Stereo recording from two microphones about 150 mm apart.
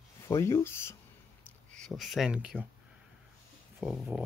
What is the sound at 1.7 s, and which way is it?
Speech, centre (ahead or behind).